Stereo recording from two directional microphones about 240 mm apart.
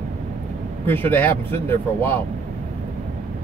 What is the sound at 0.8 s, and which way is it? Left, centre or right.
Speech, centre.